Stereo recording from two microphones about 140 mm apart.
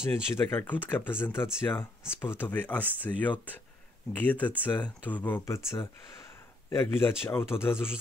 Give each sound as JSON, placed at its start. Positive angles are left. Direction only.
{"t": 0.1, "sound": "speech", "side_deg": 15}
{"t": 6.7, "sound": "speech", "side_deg": 15}